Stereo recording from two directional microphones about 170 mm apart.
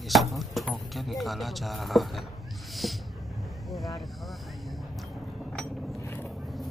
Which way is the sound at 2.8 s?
Centre (ahead or behind).